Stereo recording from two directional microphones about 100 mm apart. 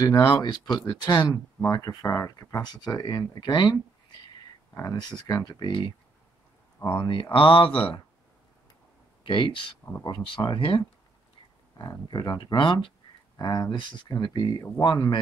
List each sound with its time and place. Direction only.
0.3 s speech: 45° left (ahead or behind)
4.7 s speech: 35° left (ahead or behind); by 5.9 s 50° left (ahead or behind)
7.0 s speech: 60° left (ahead or behind)
9.2 s speech: 55° left (ahead or behind)
11.8 s speech: 45° left (ahead or behind)